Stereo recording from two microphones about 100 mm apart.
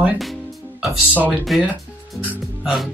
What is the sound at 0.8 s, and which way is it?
Speech, centre (ahead or behind).